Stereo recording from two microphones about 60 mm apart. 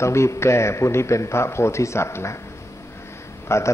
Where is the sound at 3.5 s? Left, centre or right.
Left.